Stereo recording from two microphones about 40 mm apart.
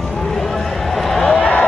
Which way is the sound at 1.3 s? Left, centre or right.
Left.